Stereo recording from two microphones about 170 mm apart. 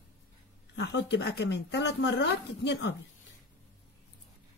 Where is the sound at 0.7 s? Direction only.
90° left.